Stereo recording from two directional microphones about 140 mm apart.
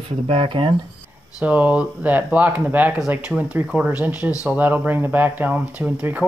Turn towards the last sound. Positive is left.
turn(degrees=-10)  # may be behind; listen again after turning